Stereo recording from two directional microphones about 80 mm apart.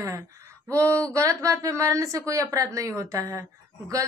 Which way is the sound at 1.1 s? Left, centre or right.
Right.